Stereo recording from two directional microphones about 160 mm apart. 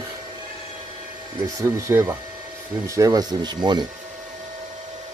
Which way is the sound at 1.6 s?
20° right (ahead or behind).